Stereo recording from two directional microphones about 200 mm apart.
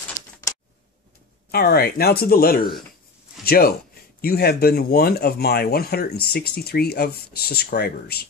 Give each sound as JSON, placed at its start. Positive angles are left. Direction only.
{"t": 1.5, "sound": "speech", "side_deg": 50}